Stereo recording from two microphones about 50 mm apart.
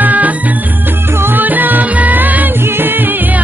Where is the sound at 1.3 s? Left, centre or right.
Right.